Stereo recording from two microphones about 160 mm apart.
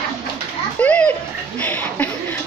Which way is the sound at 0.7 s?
10° left (ahead or behind).